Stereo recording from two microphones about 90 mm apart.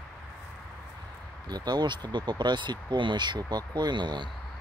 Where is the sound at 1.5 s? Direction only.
50° right (ahead or behind).